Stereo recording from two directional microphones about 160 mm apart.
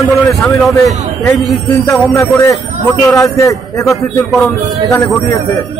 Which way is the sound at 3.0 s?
20° left (ahead or behind).